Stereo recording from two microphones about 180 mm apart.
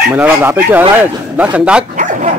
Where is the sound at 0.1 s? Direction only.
10° right (ahead or behind).